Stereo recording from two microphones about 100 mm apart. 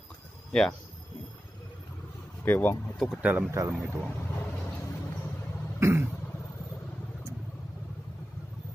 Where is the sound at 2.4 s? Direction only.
20° left (ahead or behind).